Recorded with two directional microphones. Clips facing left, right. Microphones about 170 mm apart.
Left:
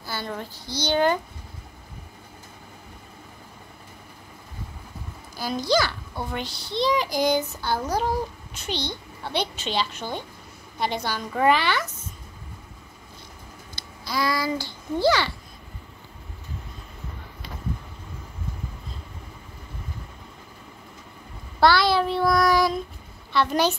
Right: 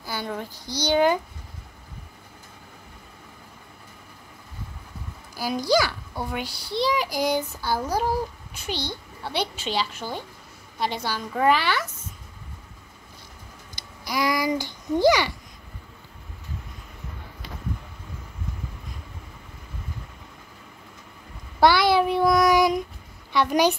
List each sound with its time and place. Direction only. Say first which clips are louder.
0.0 s a child's voice: right 1 dB; 15° right (ahead or behind)
5.3 s a child's voice: right 1 dB; 10° right (ahead or behind)
13.7 s speech: right 1 dB; 15° right (ahead or behind)
21.5 s child singing: right 1 dB; 15° right (ahead or behind)
23.3 s a child's voice: right 2 dB; 15° right (ahead or behind)